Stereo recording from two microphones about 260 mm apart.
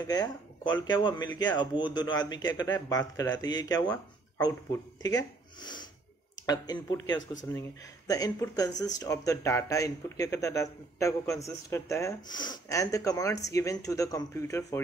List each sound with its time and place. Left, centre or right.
0.0 s speech: centre